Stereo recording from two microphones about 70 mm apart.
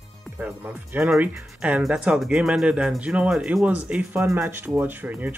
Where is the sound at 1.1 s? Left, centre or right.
Centre.